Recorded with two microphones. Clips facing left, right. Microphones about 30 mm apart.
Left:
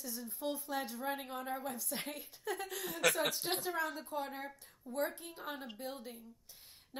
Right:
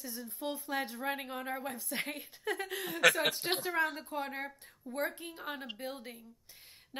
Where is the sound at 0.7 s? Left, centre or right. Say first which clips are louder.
Right 3 dB; right.